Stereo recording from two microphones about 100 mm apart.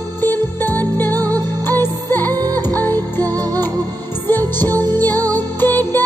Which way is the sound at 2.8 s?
20° left (ahead or behind).